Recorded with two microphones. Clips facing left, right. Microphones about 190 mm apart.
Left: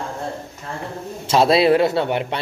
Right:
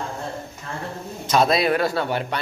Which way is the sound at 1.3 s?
25° left (ahead or behind).